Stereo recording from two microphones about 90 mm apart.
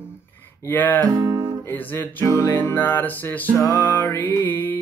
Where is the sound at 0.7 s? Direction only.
20° left (ahead or behind).